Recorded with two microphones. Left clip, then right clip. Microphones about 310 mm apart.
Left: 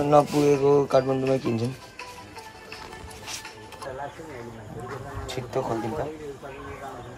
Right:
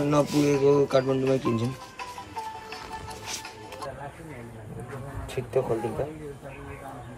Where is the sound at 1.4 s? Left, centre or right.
Centre.